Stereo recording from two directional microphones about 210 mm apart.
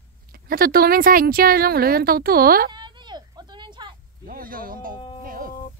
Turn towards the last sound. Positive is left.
turn(degrees=-40)  # may be behind; listen again after turning